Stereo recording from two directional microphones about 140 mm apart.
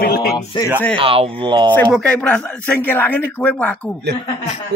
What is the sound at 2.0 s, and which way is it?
Speech, 10° left (ahead or behind).